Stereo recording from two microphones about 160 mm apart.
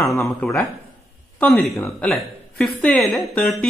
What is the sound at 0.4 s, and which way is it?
A woman's voice, centre (ahead or behind).